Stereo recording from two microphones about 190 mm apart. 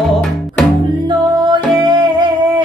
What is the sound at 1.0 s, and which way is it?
Music, 25° right (ahead or behind).